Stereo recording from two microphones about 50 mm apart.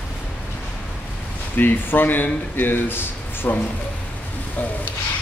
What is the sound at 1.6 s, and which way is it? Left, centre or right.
Speech, left.